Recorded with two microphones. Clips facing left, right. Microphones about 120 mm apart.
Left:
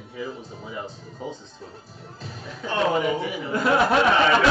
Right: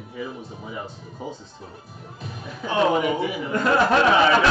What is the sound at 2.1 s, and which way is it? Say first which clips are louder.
Speech: right 2 dB; 55° right (ahead or behind).